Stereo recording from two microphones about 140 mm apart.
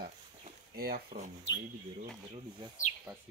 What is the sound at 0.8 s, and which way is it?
Speech, 90° right.